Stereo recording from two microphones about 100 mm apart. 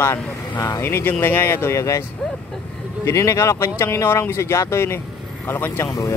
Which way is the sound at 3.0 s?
30° left (ahead or behind).